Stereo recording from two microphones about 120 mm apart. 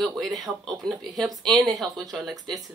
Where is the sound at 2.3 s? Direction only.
30° right (ahead or behind).